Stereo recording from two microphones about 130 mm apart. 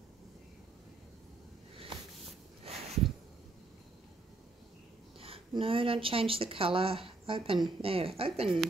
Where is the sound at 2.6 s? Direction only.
55° right (ahead or behind).